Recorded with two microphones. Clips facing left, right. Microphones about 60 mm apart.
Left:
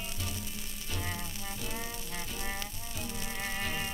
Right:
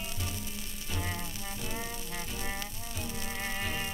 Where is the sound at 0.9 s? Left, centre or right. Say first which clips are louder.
Right 1 dB; centre.